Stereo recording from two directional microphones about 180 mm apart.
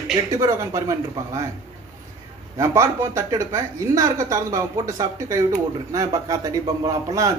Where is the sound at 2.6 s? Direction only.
15° right (ahead or behind).